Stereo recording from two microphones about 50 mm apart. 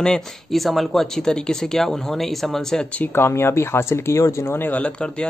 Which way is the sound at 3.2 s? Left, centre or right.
Left.